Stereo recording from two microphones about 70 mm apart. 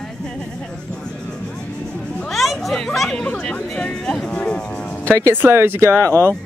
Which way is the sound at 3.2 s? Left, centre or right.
Centre.